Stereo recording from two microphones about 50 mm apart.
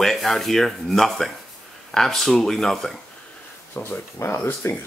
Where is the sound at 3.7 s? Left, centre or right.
Left.